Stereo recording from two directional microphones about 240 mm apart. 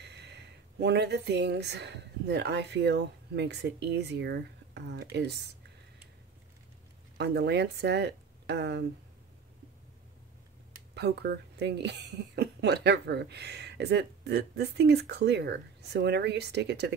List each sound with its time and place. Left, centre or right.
0.0 s speech: right
7.2 s speech: right
11.0 s speech: right